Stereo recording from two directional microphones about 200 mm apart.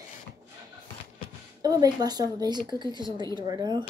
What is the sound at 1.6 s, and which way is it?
Speech, 20° right (ahead or behind).